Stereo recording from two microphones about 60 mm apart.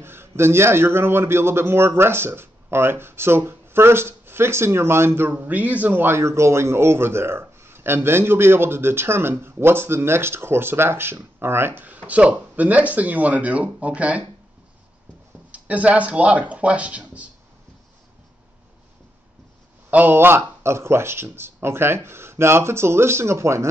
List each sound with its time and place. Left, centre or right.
0.0 s speech: right
5.3 s speech: right
6.1 s speech: right
12.1 s speech: right
15.5 s speech: right
19.9 s speech: right